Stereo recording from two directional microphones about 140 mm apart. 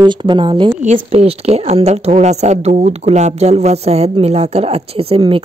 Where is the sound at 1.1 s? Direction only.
45° right (ahead or behind).